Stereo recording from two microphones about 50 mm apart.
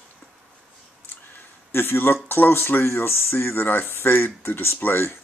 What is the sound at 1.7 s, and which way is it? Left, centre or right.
Speech, left.